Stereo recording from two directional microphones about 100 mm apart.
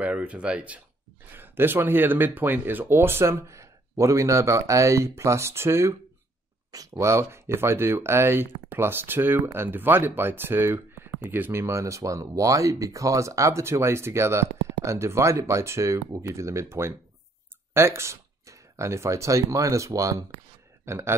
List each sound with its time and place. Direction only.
0.0 s speech: 15° right (ahead or behind)
1.3 s speech: 20° right (ahead or behind)